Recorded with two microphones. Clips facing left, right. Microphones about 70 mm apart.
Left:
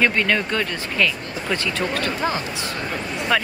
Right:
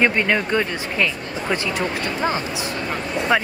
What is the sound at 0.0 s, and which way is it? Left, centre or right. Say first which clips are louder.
Speech: right 1 dB; right.